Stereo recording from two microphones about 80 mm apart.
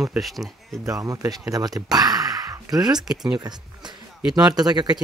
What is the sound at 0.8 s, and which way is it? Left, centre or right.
Speech, right.